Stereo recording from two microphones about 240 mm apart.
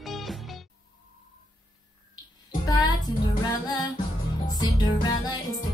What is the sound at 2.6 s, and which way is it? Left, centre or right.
Music, centre.